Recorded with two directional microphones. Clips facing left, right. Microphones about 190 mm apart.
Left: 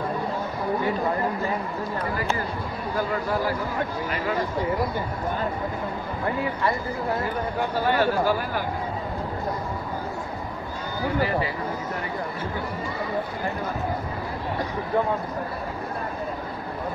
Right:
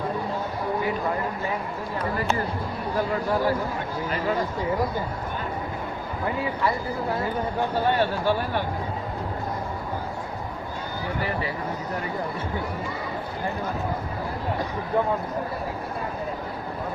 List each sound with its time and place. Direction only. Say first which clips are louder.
8.0 s speech: left 1 dB; 30° right (ahead or behind)